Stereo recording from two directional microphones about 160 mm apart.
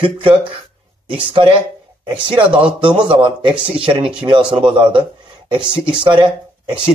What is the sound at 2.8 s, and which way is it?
Speech, 30° right (ahead or behind).